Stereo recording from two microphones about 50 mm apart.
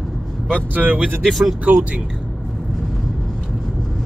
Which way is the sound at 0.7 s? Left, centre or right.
Right.